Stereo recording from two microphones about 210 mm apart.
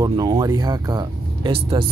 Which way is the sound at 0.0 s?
20° right (ahead or behind).